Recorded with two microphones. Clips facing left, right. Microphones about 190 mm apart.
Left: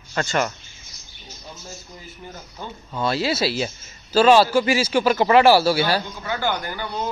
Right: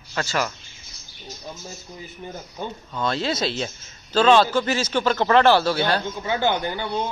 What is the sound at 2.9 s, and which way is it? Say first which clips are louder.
A man's voice: left 2 dB; 5° left (ahead or behind).